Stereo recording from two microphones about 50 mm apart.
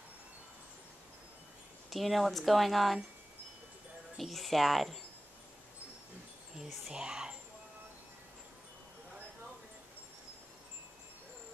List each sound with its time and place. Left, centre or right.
1.9 s speech: centre
4.2 s speech: centre
6.5 s speech: centre